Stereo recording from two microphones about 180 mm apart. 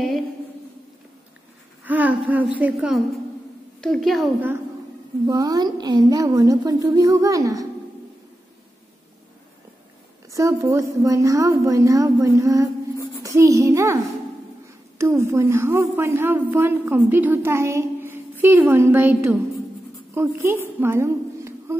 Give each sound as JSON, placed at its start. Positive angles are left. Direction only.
{"t": 1.9, "sound": "a woman's voice", "side_deg": -10}
{"t": 5.2, "sound": "a woman's voice", "side_deg": -20}
{"t": 10.3, "sound": "a woman's voice", "side_deg": -20}